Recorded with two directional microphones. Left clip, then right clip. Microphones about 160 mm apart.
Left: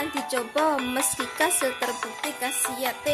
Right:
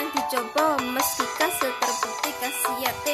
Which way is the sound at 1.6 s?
45° right (ahead or behind).